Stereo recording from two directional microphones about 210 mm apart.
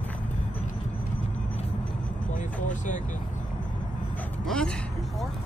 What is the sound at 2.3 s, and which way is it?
Vehicle, 35° left (ahead or behind).